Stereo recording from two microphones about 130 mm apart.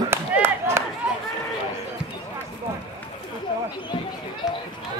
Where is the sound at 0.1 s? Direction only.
20° right (ahead or behind).